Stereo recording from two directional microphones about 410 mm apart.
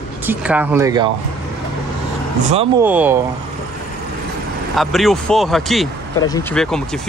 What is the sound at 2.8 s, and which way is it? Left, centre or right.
Speech, centre.